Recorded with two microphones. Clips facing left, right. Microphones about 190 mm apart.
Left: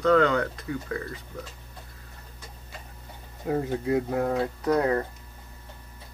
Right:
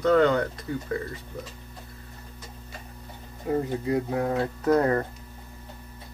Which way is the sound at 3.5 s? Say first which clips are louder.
Even; centre (ahead or behind).